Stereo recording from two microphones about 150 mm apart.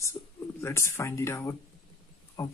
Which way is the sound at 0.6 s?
20° left (ahead or behind).